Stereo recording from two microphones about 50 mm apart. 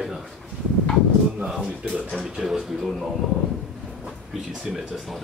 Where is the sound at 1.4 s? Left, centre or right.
Centre.